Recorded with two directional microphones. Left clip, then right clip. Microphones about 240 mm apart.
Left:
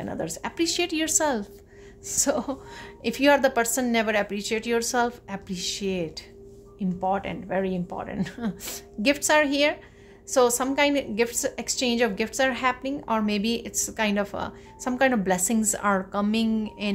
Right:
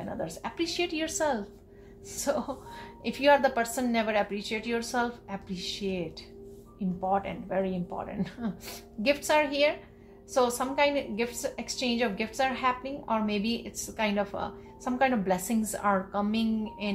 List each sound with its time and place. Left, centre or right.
0.0 s a woman's voice: left